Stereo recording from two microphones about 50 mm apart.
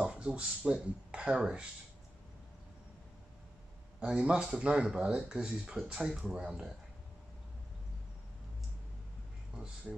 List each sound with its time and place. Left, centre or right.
0.1 s speech: centre
4.0 s speech: right
9.9 s speech: centre